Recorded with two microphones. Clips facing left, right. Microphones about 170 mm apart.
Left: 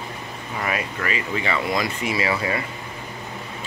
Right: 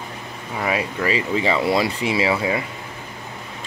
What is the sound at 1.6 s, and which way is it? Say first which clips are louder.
Speech: right 4 dB; 30° right (ahead or behind).